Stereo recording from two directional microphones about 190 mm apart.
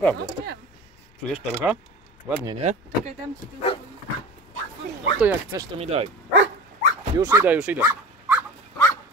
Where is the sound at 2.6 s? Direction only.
40° right (ahead or behind).